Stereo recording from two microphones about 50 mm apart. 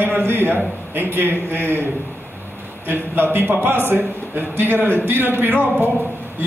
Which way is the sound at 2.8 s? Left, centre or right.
Right.